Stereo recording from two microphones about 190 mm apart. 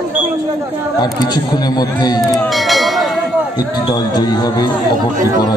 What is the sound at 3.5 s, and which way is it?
A man's voice, 20° left (ahead or behind).